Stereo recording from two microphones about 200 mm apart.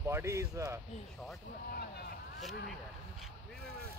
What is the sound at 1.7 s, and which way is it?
Speech, 50° left (ahead or behind).